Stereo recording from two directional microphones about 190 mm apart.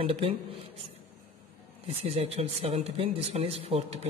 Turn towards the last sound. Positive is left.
turn(degrees=-30)  # may be behind; listen again after turning